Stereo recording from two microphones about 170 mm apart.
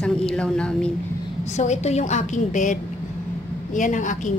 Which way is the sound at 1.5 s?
40° left (ahead or behind).